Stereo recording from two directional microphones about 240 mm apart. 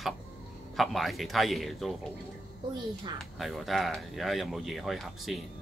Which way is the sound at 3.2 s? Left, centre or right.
Centre.